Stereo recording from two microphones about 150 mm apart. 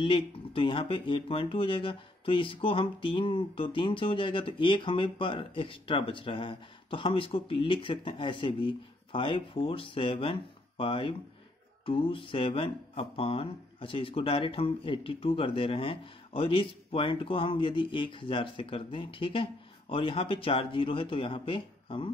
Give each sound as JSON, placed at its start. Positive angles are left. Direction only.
{"t": 0.0, "sound": "speech", "side_deg": 35}